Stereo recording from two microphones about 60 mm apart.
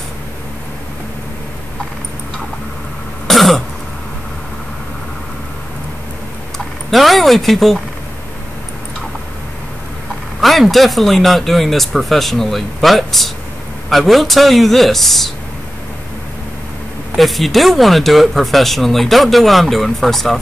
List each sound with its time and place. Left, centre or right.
3.3 s cough: centre
6.9 s a sound: centre
10.4 s speech: centre
17.1 s speech: centre